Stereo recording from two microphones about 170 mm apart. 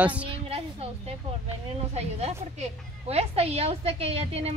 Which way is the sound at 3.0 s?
35° right (ahead or behind).